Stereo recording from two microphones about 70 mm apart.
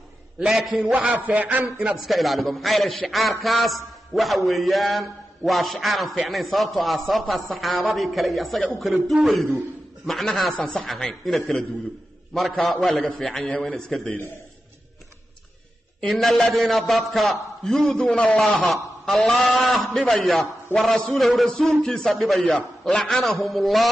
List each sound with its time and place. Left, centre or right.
0.4 s a man's voice: centre
0.9 s a man's voice: right
2.0 s a man's voice: centre
16.0 s a man's voice: centre